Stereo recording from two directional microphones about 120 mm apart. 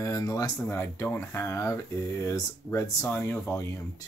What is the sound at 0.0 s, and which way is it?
Speech, 30° left (ahead or behind).